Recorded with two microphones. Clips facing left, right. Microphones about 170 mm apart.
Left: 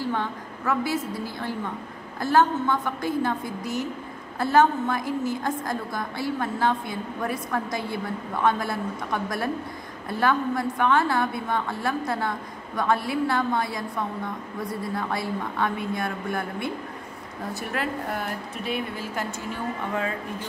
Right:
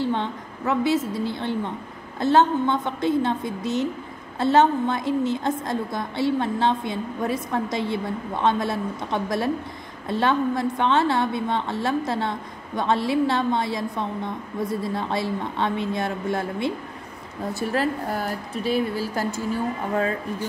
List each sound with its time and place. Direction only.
0.0 s a woman's voice: 25° right (ahead or behind)
17.6 s a woman's voice: 35° right (ahead or behind)